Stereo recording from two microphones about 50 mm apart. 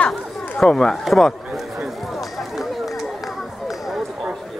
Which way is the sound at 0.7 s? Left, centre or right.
Centre.